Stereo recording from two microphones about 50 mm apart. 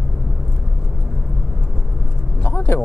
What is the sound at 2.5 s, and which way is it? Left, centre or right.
Vehicle, left.